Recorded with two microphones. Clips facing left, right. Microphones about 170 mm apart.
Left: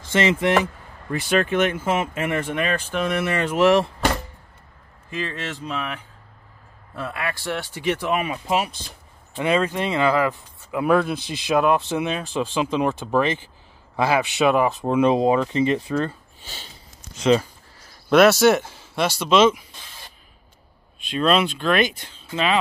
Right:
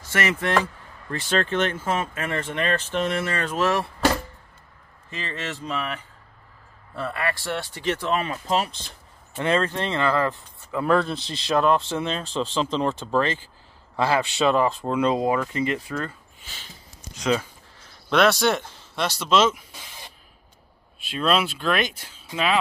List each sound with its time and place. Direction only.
0.1 s speech: 25° left (ahead or behind)
5.2 s speech: centre (ahead or behind)
7.0 s speech: 5° left (ahead or behind); by 16.6 s 30° left (ahead or behind)
17.2 s speech: centre (ahead or behind)
21.0 s speech: centre (ahead or behind)